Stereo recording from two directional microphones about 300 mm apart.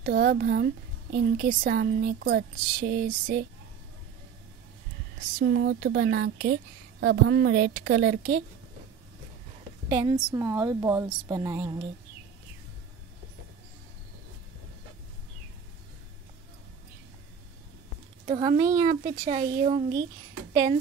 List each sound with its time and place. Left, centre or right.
0.0 s a woman's voice: right
5.4 s a woman's voice: right
9.8 s a woman's voice: centre
18.2 s a woman's voice: centre